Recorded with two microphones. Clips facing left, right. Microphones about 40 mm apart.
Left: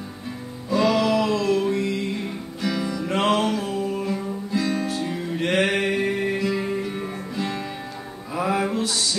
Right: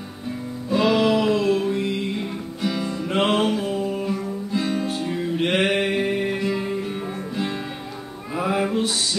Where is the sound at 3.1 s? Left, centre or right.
Right.